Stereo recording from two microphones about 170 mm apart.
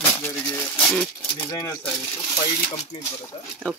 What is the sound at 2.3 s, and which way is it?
Speech, 25° left (ahead or behind).